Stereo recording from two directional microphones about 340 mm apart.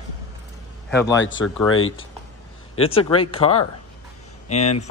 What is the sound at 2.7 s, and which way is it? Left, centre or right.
Speech, centre.